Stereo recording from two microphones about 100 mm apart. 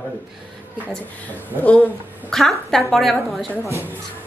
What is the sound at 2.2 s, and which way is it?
A woman's voice, 5° left (ahead or behind).